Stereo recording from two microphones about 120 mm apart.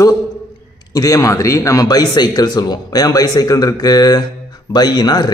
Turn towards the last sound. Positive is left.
turn(degrees=35)  # may be behind; listen again after turning